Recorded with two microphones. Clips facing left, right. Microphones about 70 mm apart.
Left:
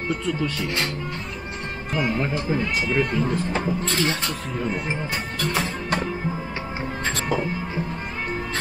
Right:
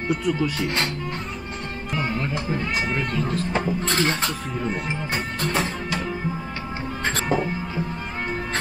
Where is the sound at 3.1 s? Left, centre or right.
Left.